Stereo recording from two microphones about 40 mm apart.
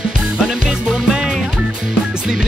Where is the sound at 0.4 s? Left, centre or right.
Centre.